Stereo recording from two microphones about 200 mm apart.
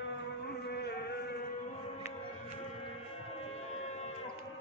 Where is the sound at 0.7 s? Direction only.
55° left (ahead or behind).